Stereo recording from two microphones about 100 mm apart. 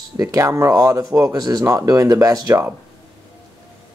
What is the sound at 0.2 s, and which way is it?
Speech, 30° right (ahead or behind).